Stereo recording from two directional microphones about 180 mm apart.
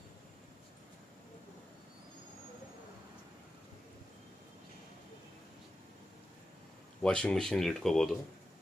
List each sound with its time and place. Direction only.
7.0 s speech: 5° left (ahead or behind)